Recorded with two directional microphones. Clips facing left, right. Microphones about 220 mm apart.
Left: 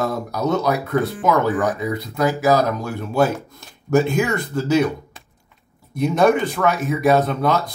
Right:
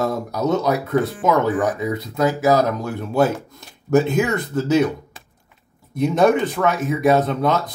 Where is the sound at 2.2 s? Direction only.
20° right (ahead or behind).